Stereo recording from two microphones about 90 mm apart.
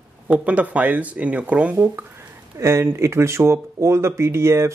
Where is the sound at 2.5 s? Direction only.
30° right (ahead or behind).